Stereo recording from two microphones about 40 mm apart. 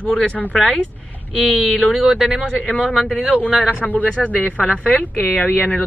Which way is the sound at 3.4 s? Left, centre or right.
Left.